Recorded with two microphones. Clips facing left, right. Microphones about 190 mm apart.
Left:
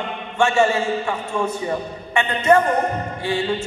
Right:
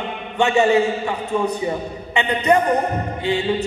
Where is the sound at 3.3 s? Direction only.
20° right (ahead or behind).